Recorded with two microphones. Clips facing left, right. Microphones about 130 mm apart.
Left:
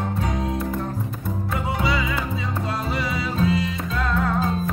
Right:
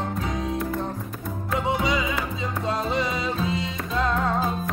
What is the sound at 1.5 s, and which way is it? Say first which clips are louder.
Music: right 1 dB; 20° right (ahead or behind).